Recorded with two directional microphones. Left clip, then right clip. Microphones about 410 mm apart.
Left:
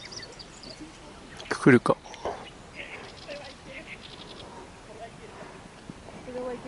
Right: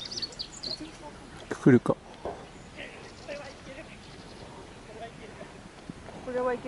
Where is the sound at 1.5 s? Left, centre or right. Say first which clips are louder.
Left 3 dB; centre.